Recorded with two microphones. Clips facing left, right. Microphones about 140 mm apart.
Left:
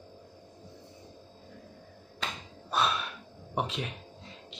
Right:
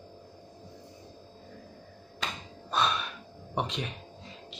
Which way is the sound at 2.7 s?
5° left (ahead or behind).